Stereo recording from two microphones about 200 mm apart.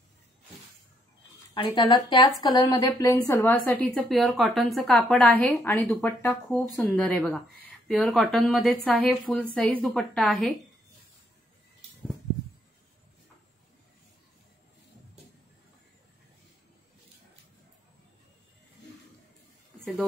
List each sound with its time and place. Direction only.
1.5 s a woman's voice: 20° left (ahead or behind); by 10.5 s centre (ahead or behind)